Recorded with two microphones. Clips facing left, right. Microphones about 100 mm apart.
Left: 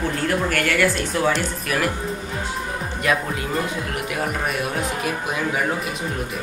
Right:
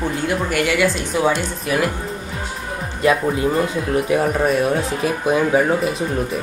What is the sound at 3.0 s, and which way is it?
Speech, 30° right (ahead or behind).